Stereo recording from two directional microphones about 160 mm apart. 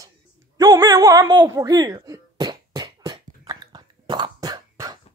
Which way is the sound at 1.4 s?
20° right (ahead or behind).